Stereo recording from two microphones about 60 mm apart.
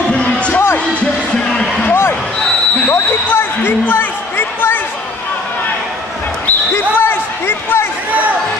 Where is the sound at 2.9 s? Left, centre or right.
Left.